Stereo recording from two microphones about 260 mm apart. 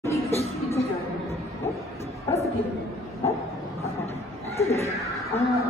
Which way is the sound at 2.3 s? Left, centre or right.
Centre.